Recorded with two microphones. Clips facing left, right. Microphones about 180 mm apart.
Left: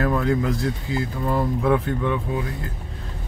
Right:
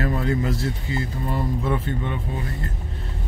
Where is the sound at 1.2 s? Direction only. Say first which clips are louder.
Left 6 dB; 90° left.